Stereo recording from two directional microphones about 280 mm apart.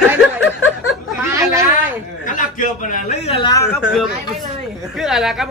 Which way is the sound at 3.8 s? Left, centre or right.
Centre.